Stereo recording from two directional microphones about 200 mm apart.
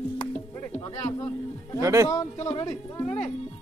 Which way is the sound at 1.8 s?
15° right (ahead or behind).